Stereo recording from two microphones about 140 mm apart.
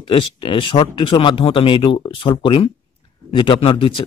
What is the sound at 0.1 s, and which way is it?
A man's voice, 40° left (ahead or behind).